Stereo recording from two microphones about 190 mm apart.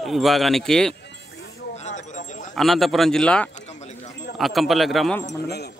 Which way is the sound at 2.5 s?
Centre (ahead or behind).